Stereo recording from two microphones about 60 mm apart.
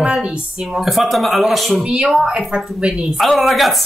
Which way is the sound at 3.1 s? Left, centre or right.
Centre.